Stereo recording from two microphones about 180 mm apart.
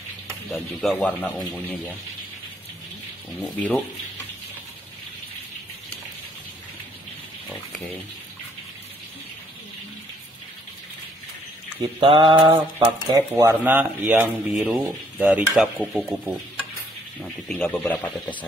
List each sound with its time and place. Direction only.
0.5 s speech: 10° left (ahead or behind)
3.4 s speech: 10° left (ahead or behind)
12.0 s mantra: 30° right (ahead or behind)
12.7 s speech: 15° right (ahead or behind)
17.2 s speech: 5° left (ahead or behind)